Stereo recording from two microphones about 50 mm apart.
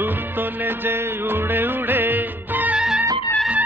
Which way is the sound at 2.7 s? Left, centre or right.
Centre.